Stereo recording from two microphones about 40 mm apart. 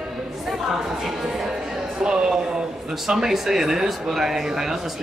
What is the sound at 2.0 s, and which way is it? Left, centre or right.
Speech, centre.